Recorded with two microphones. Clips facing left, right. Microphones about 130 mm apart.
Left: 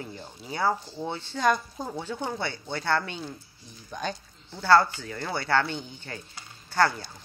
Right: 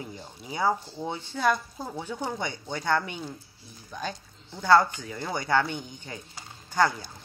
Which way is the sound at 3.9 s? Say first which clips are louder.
Left 2 dB; centre (ahead or behind).